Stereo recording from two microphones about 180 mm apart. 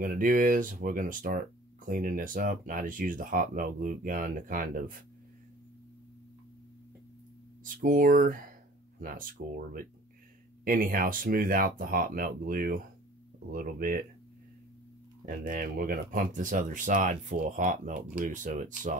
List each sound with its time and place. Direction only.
0.0 s speech: 50° right (ahead or behind)
7.6 s speech: 50° right (ahead or behind)
15.2 s speech: 50° right (ahead or behind)